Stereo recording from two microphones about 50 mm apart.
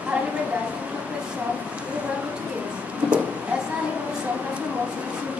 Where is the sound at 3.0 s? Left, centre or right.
Right.